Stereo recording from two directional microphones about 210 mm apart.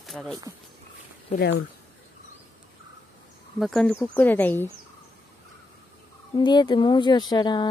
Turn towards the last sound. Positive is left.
turn(degrees=20)  # may be behind; listen again after turning